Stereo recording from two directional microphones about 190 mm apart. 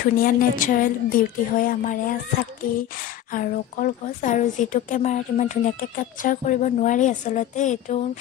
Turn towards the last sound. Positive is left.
turn(degrees=40)  # may be behind; listen again after turning